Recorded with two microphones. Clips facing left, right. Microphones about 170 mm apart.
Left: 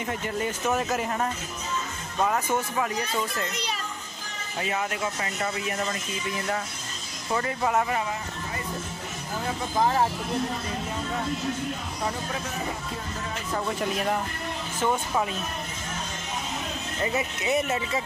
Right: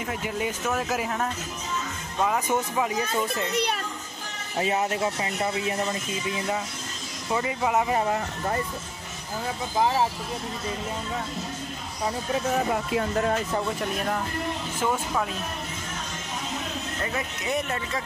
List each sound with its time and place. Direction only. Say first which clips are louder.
0.0 s speech: even; 5° right (ahead or behind)
2.4 s speech: right 1 dB; 15° right (ahead or behind)
3.5 s a child's voice: right 7 dB; 60° right (ahead or behind)
4.6 s speech: right 4 dB; 25° right (ahead or behind); by 7.8 s 10° right (ahead or behind)
8.0 s speech: right 5 dB; 50° right (ahead or behind)
9.8 s speech: even; 10° right (ahead or behind)
12.7 s speech: right 9 dB; 70° right (ahead or behind)
17.0 s speech: left 5 dB; 10° left (ahead or behind)